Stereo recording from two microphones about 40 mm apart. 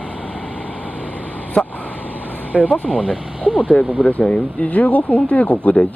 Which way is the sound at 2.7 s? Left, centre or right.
Left.